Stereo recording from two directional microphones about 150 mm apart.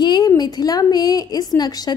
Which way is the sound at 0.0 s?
30° left (ahead or behind).